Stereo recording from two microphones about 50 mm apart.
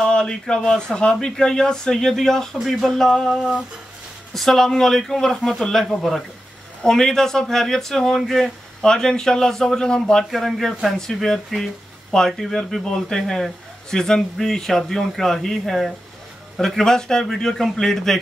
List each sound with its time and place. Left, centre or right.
0.0 s speech: centre
2.6 s speech: centre
2.9 s speech: centre